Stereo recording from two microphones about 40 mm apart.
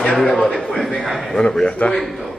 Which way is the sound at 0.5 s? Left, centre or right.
Centre.